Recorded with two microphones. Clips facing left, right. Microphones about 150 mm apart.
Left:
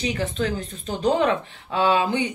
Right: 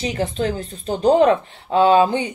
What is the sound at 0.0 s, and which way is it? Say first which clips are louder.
Speech: right 3 dB; 35° right (ahead or behind).